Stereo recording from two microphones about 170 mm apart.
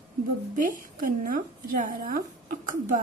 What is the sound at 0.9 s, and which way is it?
Speech, 50° right (ahead or behind).